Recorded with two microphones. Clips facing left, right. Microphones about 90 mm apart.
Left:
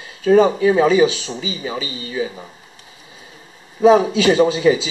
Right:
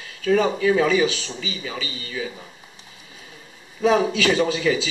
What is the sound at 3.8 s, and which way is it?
Speech, 30° left (ahead or behind).